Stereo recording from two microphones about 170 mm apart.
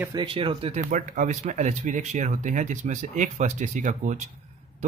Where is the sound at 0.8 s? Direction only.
50° right (ahead or behind).